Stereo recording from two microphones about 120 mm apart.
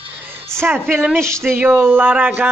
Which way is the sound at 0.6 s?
15° right (ahead or behind).